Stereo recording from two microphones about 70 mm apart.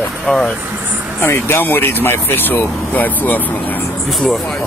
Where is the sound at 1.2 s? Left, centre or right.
Left.